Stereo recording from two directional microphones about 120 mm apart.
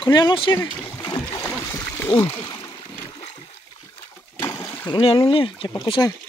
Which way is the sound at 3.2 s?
60° left (ahead or behind).